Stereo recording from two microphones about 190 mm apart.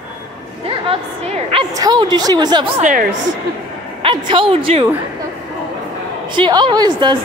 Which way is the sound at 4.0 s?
25° right (ahead or behind).